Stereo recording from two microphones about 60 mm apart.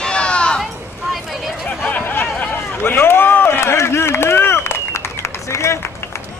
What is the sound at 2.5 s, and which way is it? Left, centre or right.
Run, left.